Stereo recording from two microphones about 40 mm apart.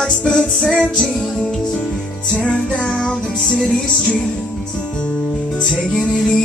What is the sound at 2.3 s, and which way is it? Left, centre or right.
Music, left.